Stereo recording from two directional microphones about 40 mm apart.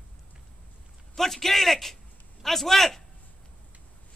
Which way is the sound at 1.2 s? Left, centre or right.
Centre.